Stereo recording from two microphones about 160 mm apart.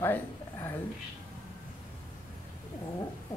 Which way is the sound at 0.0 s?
15° left (ahead or behind).